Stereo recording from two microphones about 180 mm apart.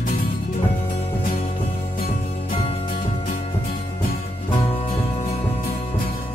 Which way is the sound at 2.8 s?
50° left (ahead or behind).